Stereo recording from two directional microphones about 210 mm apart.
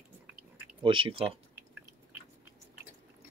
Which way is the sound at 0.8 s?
25° right (ahead or behind).